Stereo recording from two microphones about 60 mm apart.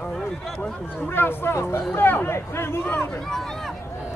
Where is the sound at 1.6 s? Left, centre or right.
Left.